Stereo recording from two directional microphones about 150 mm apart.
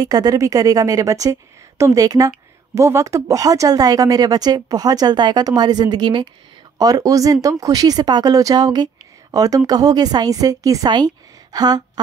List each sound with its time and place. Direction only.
0.0 s a woman's voice: 25° right (ahead or behind)